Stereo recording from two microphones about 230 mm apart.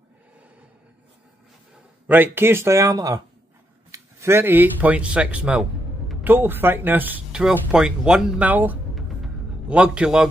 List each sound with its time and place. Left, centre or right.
2.0 s speech: centre